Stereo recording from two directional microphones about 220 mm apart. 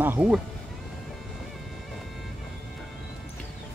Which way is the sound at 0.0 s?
5° right (ahead or behind).